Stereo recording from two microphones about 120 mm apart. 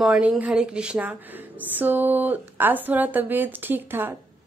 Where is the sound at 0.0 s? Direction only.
5° right (ahead or behind).